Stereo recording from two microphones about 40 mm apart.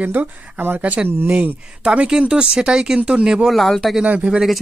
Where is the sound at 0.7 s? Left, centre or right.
Right.